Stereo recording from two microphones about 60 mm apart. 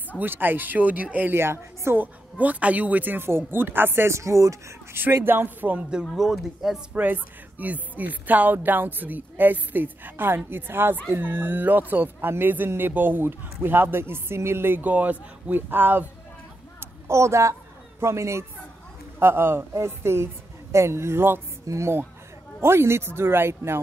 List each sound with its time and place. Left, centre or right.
0.2 s speech: right
1.3 s speech: right
2.3 s speech: right
5.1 s speech: right
6.4 s speech: centre
6.9 s speech: right
16.8 s a woman's voice: right
19.1 s speech: right
21.6 s speech: right